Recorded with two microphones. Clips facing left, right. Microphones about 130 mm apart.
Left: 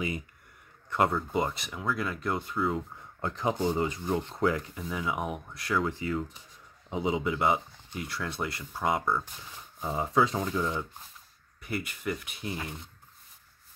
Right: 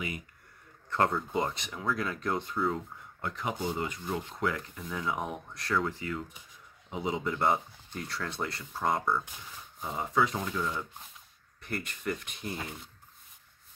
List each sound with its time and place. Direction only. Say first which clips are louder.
0.8 s speech: left 1 dB; 10° left (ahead or behind)
3.2 s speech: left 5 dB; 30° left (ahead or behind)
4.7 s speech: left 1 dB; 5° left (ahead or behind)
5.9 s speech: left 4 dB; 20° left (ahead or behind)
7.2 s speech: left 1 dB; 5° left (ahead or behind)
9.8 s speech: left 3 dB; 25° left (ahead or behind)
11.6 s speech: left 2 dB; 10° left (ahead or behind)